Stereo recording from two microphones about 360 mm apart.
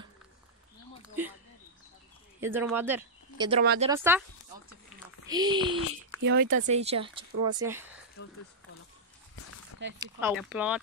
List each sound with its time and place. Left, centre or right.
1.2 s speech: centre
2.4 s speech: centre
5.2 s speech: centre
6.2 s speech: right; by 8.0 s centre
9.8 s speech: right
10.2 s speech: centre